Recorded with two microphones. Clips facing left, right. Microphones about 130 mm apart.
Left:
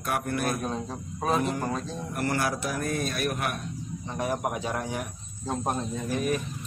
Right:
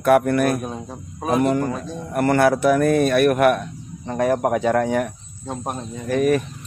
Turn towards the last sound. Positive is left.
turn(degrees=-65)  # may be behind; listen again after turning